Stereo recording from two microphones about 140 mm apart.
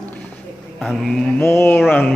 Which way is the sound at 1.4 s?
15° left (ahead or behind).